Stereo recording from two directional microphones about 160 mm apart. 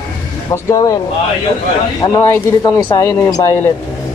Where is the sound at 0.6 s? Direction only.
20° left (ahead or behind).